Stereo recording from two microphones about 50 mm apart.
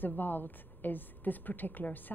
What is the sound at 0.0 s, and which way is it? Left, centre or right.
A woman's voice, left.